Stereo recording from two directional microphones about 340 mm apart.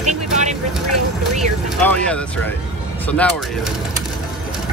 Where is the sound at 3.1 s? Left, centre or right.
Centre.